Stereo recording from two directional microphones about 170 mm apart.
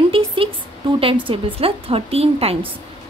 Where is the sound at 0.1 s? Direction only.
30° right (ahead or behind).